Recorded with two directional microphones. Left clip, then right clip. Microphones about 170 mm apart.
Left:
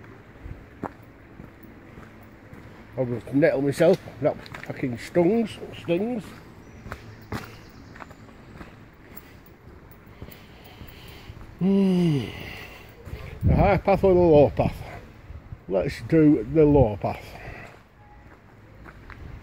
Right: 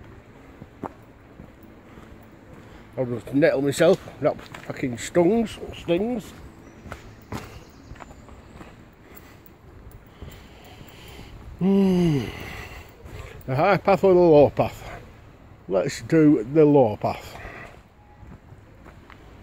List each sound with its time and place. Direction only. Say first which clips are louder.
3.0 s speech: right 1 dB; 5° right (ahead or behind); by 6.2 s 20° right (ahead or behind)
11.1 s a sound: right 1 dB; 20° right (ahead or behind)
15.7 s speech: right 1 dB; 10° right (ahead or behind)